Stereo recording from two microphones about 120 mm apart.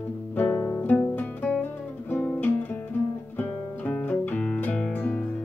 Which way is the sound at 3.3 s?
15° left (ahead or behind).